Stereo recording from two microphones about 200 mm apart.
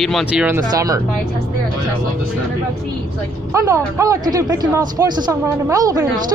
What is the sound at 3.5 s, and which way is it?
Speech, 15° right (ahead or behind).